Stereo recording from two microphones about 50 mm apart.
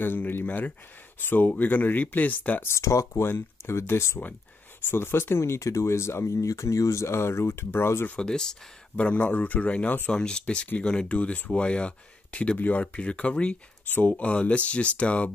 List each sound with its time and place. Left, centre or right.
0.5 s speech: left
1.5 s speech: left
2.7 s speech: left
3.3 s speech: left
5.4 s speech: left
8.2 s speech: centre
8.9 s speech: left
12.8 s speech: left
13.8 s speech: left
14.1 s speech: left